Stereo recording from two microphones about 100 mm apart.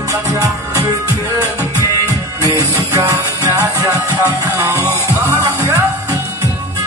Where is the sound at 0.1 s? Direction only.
30° right (ahead or behind).